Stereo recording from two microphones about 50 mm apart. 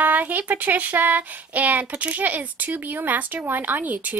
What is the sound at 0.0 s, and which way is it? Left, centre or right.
Speech, right.